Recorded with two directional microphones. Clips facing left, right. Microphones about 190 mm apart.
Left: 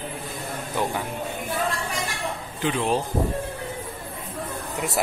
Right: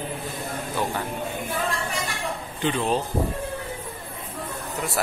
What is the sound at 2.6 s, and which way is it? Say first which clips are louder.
Speech: even; 5° left (ahead or behind).